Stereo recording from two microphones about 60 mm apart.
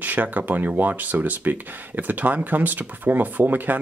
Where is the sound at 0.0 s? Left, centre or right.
Right.